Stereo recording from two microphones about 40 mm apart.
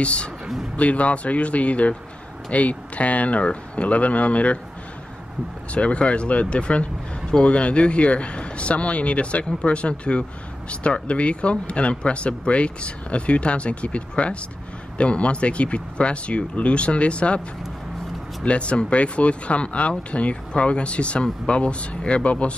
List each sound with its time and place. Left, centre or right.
0.0 s speech: left
5.7 s speech: left
18.4 s speech: left